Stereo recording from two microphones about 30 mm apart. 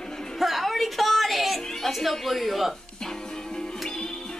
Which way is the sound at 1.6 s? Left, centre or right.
Centre.